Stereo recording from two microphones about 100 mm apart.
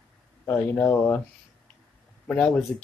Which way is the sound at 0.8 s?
20° left (ahead or behind).